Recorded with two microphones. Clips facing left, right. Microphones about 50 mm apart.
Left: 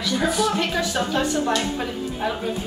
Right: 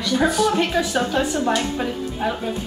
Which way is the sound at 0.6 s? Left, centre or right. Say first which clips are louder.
Right 3 dB; centre.